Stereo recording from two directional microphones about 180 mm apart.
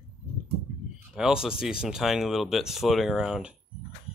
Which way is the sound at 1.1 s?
5° right (ahead or behind).